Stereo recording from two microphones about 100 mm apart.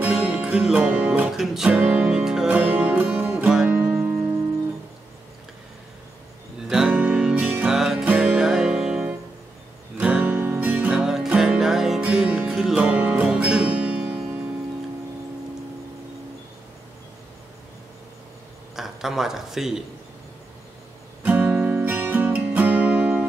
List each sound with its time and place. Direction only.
0.0 s music: 10° right (ahead or behind)
6.7 s music: 5° right (ahead or behind)
18.8 s speech: 5° right (ahead or behind)
21.2 s music: 15° right (ahead or behind)